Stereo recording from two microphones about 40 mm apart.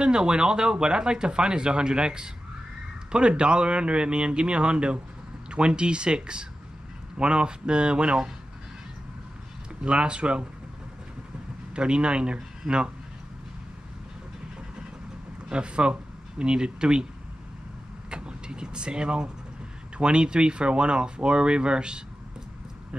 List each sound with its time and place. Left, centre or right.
0.0 s speech: right
9.8 s speech: right
11.7 s speech: right
15.5 s speech: right
18.1 s speech: right